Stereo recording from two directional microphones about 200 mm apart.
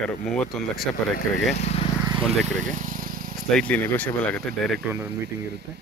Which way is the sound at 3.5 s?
5° left (ahead or behind).